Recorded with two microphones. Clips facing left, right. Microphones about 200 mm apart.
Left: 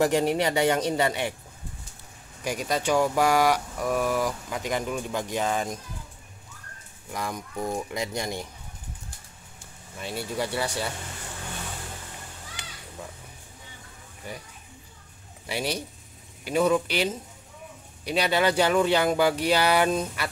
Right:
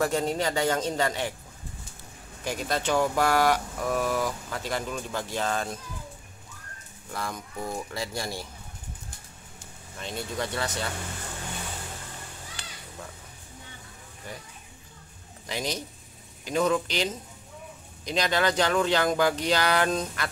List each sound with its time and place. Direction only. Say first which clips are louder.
0.0 s speech: left 4 dB; 15° left (ahead or behind)
2.4 s speech: left 2 dB; 10° left (ahead or behind)
7.1 s speech: left 2 dB; 15° left (ahead or behind)
9.9 s speech: left 2 dB; 10° left (ahead or behind)
15.4 s speech: left 2 dB; 10° left (ahead or behind)